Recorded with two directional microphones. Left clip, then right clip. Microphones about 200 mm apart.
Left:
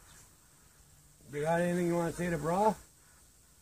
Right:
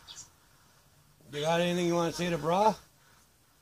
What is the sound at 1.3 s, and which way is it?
Speech, 15° right (ahead or behind).